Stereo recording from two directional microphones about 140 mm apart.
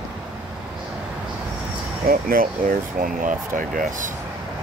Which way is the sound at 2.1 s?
90° right.